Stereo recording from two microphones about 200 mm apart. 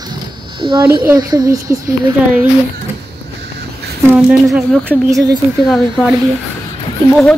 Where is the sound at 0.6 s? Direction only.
25° right (ahead or behind).